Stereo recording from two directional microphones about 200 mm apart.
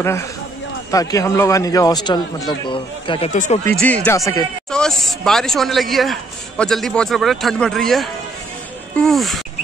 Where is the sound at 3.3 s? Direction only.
40° left (ahead or behind).